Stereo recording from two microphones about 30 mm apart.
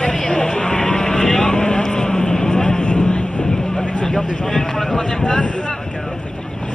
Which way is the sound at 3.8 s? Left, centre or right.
Left.